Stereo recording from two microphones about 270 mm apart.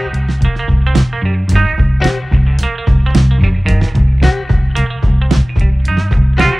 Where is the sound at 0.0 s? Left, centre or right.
Centre.